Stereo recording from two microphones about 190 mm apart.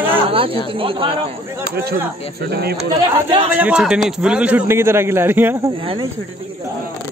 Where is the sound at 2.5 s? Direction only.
55° right (ahead or behind).